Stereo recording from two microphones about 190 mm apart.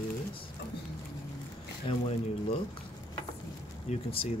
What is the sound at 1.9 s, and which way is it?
Speech, 30° left (ahead or behind).